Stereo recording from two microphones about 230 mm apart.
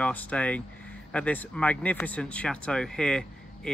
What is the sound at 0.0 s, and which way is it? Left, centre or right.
Speech, centre.